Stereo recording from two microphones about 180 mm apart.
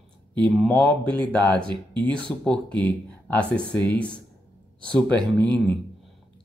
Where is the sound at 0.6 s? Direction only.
5° left (ahead or behind).